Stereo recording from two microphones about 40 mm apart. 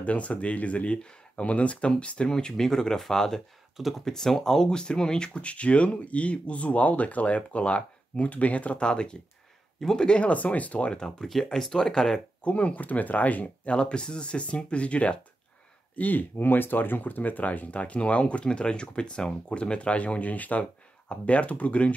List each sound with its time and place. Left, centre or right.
0.0 s speech: left; by 4.6 s centre
4.6 s speech: left
10.2 s speech: left
10.9 s speech: left
11.4 s speech: centre
12.4 s speech: left
13.7 s speech: left
16.0 s speech: left